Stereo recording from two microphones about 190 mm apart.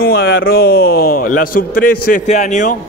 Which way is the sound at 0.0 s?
55° left (ahead or behind).